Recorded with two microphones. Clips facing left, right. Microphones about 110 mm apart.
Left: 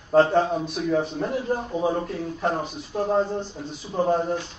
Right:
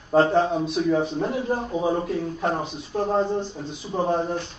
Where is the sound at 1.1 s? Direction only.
20° right (ahead or behind).